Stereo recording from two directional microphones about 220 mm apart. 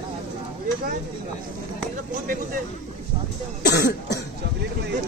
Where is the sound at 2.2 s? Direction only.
40° right (ahead or behind).